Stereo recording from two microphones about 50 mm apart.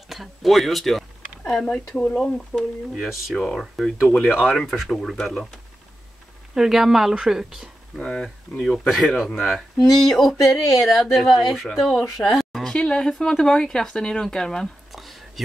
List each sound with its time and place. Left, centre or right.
0.1 s a sound: centre
1.5 s speech: centre
3.0 s speech: centre
3.3 s speech: centre
4.2 s a woman's voice: centre
4.5 s speech: centre
6.5 s a woman's voice: centre
8.0 s speech: centre
8.5 s speech: left
8.8 s speech: centre
12.2 s a sound: centre
12.7 s speech: centre
14.9 s a sound: centre